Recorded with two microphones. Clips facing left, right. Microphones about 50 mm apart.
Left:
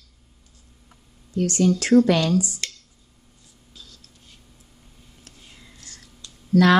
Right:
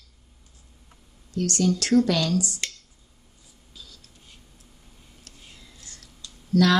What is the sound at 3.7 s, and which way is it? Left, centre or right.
Whispering, centre.